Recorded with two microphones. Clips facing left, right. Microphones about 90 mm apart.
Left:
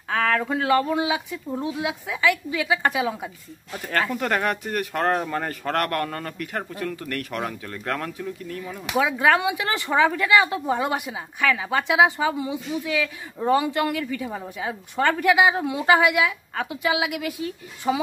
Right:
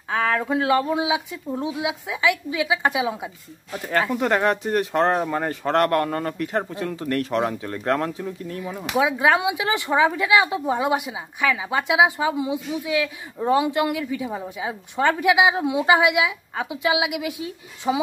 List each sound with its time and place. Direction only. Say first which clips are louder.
0.1 s speech: right 1 dB; 15° right (ahead or behind)
9.0 s speech: right 1 dB; 10° right (ahead or behind)